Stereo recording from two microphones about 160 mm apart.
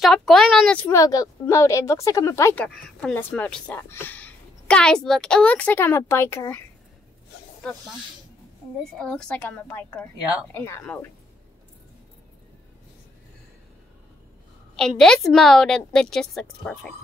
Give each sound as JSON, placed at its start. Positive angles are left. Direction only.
{"t": 0.0, "sound": "a woman's voice", "side_deg": 0}
{"t": 0.9, "sound": "speech", "side_deg": 20}
{"t": 2.6, "sound": "speech", "side_deg": 5}
{"t": 8.9, "sound": "speech", "side_deg": 5}
{"t": 14.8, "sound": "a woman's voice", "side_deg": 5}